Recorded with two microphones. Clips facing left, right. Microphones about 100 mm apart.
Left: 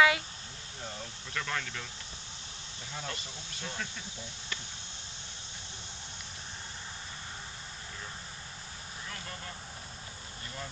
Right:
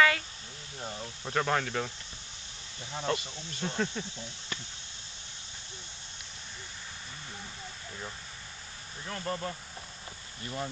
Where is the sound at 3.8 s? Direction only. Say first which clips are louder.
Right 10 dB; 30° right (ahead or behind).